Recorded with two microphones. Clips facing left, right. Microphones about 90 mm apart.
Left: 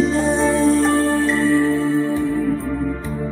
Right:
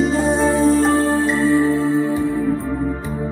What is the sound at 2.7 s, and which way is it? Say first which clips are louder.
Music: right 1 dB; 20° right (ahead or behind).